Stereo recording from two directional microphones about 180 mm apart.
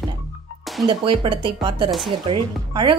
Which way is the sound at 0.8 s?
30° right (ahead or behind).